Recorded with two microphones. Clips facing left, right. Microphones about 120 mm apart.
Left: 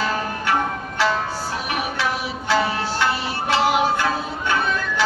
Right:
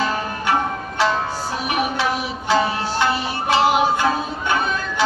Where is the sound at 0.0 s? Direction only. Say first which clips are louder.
Right 1 dB; 20° right (ahead or behind).